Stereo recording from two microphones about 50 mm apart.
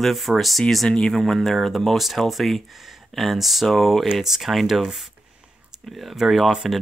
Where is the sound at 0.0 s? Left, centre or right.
Centre.